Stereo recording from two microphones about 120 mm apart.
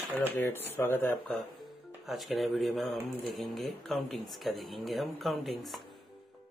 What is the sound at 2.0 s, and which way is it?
Speech, centre (ahead or behind).